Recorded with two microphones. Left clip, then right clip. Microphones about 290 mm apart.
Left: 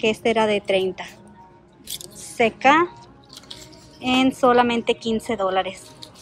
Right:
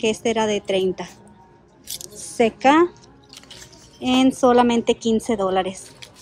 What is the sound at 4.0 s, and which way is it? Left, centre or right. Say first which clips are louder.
A woman's voice: right 1 dB; centre.